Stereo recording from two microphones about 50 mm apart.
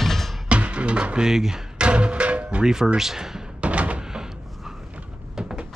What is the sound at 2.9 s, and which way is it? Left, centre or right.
Speech, centre.